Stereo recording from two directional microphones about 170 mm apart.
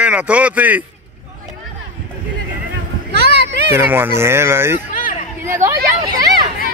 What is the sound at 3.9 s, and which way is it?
Speech, 15° right (ahead or behind).